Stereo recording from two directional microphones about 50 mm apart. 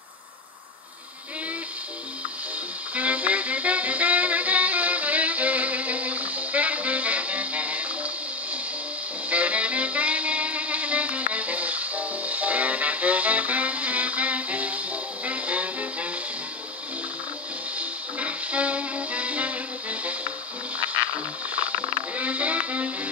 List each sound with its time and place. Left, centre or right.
2.9 s music: right
9.3 s music: right
17.7 s music: right
20.8 s music: right
21.5 s a sound: right